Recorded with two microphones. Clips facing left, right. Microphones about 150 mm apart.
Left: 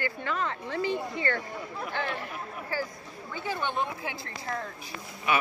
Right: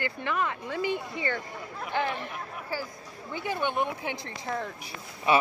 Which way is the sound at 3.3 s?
15° right (ahead or behind).